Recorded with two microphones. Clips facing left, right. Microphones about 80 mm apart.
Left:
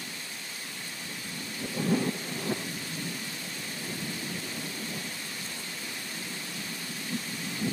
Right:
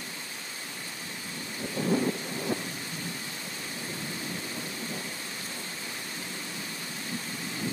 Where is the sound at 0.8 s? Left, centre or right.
Right.